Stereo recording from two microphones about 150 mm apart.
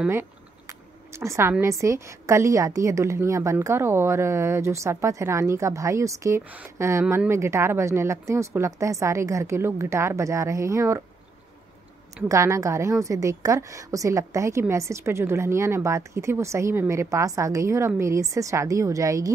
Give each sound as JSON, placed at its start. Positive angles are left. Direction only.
{"t": 0.1, "sound": "a sound", "side_deg": -15}
{"t": 1.6, "sound": "a woman's voice", "side_deg": -20}
{"t": 12.3, "sound": "a woman's voice", "side_deg": -20}